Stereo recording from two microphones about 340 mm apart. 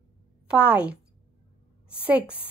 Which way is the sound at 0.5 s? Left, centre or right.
Centre.